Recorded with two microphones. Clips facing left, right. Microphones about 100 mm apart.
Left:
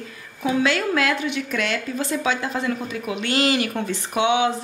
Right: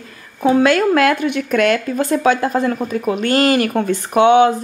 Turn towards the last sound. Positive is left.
turn(degrees=-50)  # may be behind; listen again after turning